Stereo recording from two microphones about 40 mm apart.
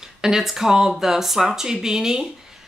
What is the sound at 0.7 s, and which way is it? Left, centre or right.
Speech, centre.